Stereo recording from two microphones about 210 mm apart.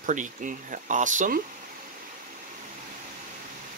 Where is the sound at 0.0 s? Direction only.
35° right (ahead or behind).